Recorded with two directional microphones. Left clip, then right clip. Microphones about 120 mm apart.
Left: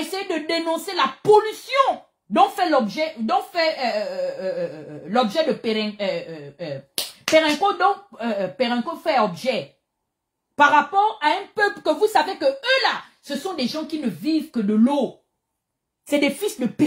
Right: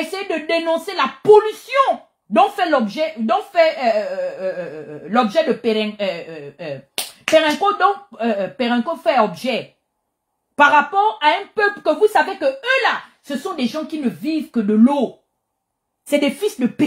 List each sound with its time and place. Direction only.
0.1 s speech: 40° left (ahead or behind)
5.4 s speech: 25° left (ahead or behind)
16.1 s speech: 30° left (ahead or behind)